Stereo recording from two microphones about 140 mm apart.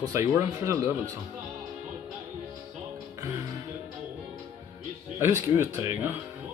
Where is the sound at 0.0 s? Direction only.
25° right (ahead or behind).